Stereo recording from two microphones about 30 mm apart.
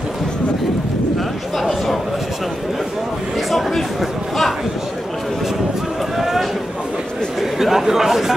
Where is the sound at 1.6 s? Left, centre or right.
Centre.